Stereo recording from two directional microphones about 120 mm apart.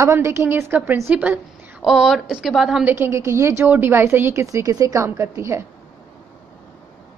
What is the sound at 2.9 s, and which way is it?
A woman's voice, 20° right (ahead or behind).